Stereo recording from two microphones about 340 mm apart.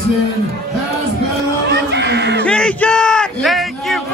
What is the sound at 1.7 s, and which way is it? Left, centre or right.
Music, right.